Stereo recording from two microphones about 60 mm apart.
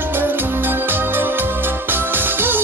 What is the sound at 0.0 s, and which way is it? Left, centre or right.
Music, right.